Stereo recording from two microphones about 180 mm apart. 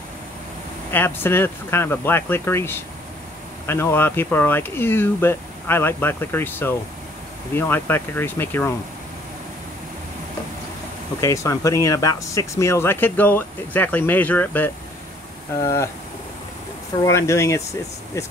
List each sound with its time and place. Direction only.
0.9 s speech: 10° left (ahead or behind)
11.1 s speech: 15° left (ahead or behind)
17.0 s speech: 15° left (ahead or behind)